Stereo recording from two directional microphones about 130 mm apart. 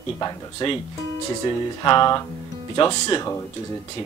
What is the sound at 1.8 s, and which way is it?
Speech, 35° left (ahead or behind).